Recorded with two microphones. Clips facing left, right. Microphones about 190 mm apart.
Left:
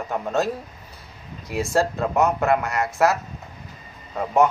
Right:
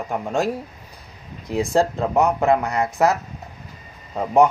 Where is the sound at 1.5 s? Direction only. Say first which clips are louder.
Right 3 dB; 15° right (ahead or behind).